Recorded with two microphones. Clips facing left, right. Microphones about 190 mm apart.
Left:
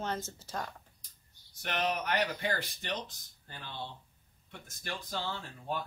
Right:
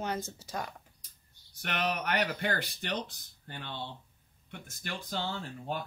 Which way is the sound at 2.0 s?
65° right (ahead or behind).